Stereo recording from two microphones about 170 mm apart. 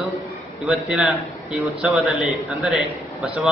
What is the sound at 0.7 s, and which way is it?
A man's voice, centre (ahead or behind).